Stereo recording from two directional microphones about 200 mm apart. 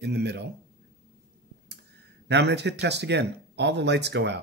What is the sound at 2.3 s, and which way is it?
Speech, 60° right (ahead or behind).